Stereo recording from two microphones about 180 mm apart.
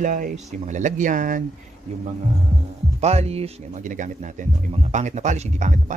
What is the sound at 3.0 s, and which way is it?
A man's voice, 35° right (ahead or behind).